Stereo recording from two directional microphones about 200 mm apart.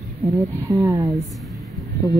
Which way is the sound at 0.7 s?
15° right (ahead or behind).